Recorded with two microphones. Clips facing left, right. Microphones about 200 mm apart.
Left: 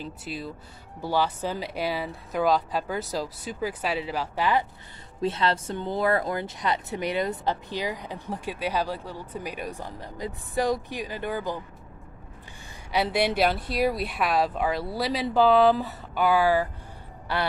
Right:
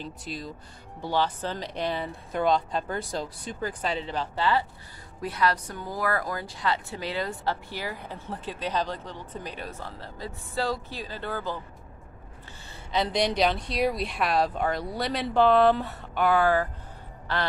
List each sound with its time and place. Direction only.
0.0 s speech: 5° left (ahead or behind)
5.2 s speech: 25° left (ahead or behind)
12.9 s speech: 5° left (ahead or behind)